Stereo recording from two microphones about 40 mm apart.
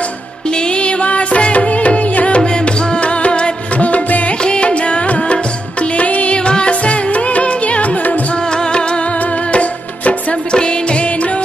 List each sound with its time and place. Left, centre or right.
0.6 s music: left
4.4 s music: left
6.3 s music: left
8.5 s music: left
9.5 s music: left
10.5 s music: left